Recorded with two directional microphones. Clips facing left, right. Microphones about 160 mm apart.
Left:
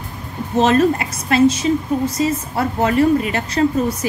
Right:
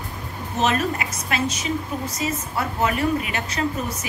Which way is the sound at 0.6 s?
35° left (ahead or behind).